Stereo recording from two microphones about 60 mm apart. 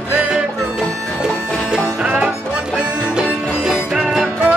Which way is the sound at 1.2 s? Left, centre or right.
Centre.